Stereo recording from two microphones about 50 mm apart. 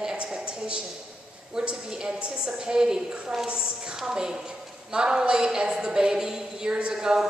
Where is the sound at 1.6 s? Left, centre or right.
Centre.